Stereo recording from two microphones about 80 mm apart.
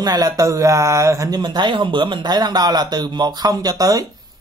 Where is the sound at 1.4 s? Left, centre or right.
Right.